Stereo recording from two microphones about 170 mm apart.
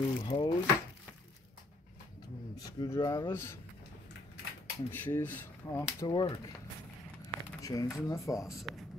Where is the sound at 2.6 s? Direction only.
20° left (ahead or behind).